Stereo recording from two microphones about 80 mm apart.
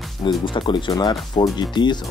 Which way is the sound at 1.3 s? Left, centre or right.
Left.